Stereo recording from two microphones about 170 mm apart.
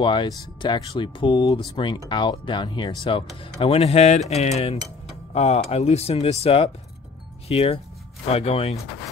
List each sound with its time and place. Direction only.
0.0 s speech: 25° left (ahead or behind)